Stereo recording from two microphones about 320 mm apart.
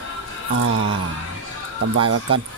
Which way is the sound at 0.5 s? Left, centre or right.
Right.